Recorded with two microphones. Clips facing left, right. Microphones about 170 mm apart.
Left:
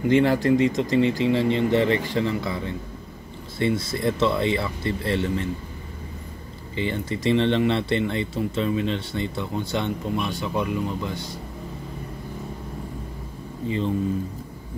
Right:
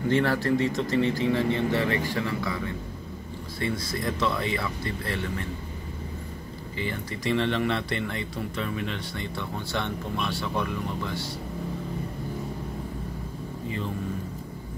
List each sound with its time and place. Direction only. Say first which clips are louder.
0.1 s speech: left 5 dB; 15° left (ahead or behind)
6.8 s speech: left 6 dB; 25° left (ahead or behind)